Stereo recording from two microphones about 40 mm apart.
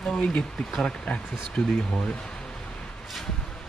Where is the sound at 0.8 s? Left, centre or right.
Left.